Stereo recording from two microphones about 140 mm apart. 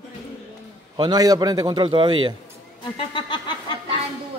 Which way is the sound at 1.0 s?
30° right (ahead or behind).